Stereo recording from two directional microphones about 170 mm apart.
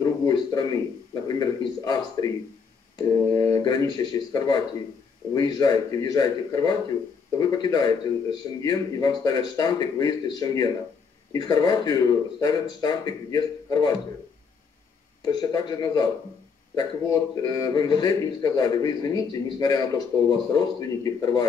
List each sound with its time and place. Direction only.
0.0 s a sound: 25° left (ahead or behind)
1.2 s a man's voice: 20° left (ahead or behind)
15.2 s a man's voice: 25° left (ahead or behind)